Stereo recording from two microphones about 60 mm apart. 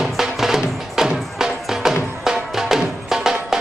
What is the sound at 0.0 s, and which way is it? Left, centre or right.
Music, centre.